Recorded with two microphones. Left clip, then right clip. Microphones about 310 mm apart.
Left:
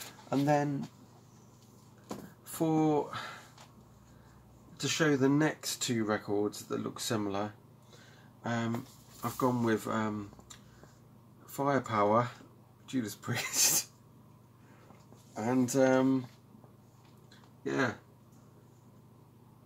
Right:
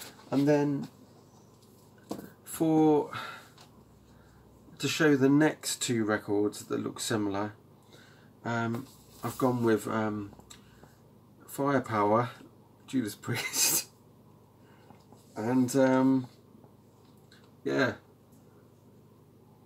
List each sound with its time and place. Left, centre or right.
0.3 s speech: centre
2.4 s speech: centre
4.7 s speech: centre
15.3 s speech: centre